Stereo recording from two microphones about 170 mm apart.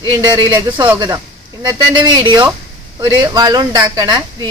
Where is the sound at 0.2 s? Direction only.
25° right (ahead or behind).